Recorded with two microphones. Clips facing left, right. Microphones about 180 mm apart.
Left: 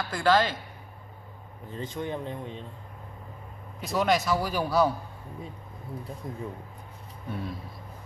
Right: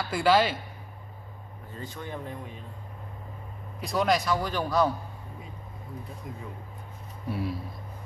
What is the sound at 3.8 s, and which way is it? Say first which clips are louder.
A man's voice: even; centre (ahead or behind).